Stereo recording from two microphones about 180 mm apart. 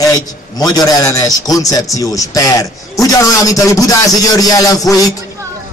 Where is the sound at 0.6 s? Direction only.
20° left (ahead or behind).